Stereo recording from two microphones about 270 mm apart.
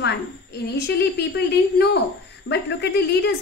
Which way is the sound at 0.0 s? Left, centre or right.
Left.